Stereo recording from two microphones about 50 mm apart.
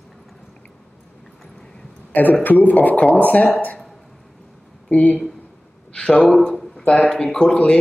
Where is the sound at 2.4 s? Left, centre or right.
Left.